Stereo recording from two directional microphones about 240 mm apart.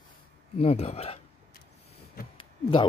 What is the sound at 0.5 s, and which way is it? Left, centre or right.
Speech, left.